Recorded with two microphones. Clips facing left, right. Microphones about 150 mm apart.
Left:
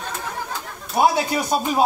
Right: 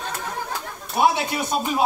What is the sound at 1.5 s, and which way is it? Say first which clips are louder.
Speech: left 3 dB; 40° left (ahead or behind).